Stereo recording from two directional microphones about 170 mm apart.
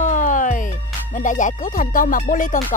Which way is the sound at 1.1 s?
50° left (ahead or behind).